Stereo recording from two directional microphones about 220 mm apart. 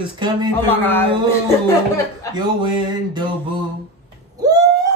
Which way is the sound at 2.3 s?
20° right (ahead or behind).